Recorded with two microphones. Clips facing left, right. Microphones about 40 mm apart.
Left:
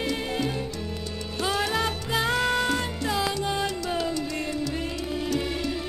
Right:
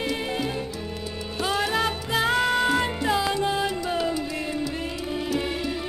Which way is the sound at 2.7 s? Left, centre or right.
Right.